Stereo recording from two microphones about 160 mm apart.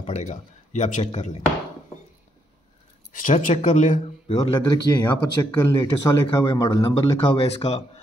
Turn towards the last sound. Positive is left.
turn(degrees=40)  # may be behind; listen again after turning